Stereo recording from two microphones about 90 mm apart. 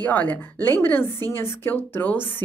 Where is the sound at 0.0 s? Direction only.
20° left (ahead or behind).